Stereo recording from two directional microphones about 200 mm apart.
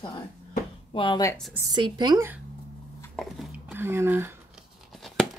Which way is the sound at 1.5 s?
20° right (ahead or behind).